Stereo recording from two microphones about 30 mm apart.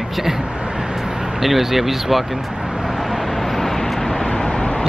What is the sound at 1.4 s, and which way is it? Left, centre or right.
Speech, centre.